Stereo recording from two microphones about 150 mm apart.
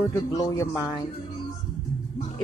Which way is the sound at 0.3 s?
20° left (ahead or behind).